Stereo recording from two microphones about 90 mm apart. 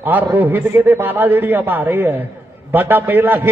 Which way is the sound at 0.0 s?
20° right (ahead or behind).